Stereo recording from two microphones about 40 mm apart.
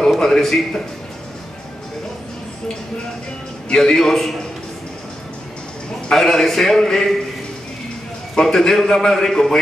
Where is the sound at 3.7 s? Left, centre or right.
Centre.